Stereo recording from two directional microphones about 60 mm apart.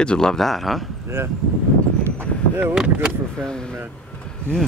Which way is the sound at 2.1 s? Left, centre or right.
Right.